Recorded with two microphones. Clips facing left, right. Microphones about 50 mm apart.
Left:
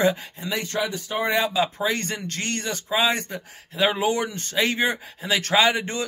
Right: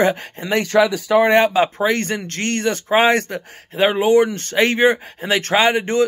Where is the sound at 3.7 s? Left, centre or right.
Right.